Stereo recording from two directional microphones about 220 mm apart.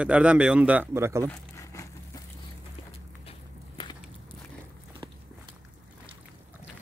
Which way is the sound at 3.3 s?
20° left (ahead or behind).